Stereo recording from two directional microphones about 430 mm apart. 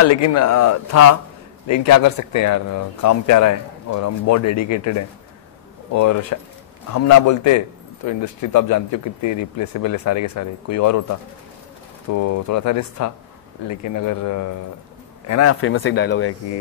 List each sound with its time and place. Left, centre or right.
0.0 s a man's voice: left